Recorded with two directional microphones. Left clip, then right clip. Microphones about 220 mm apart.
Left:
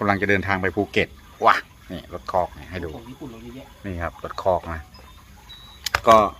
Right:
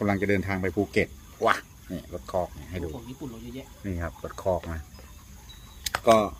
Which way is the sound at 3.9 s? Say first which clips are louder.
Left 6 dB; 20° right (ahead or behind).